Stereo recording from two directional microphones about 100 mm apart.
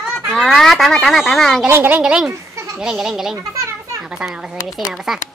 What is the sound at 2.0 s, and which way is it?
Speech, 10° right (ahead or behind).